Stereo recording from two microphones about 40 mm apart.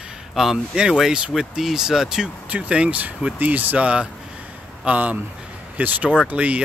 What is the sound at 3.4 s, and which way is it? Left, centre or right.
Speech, right.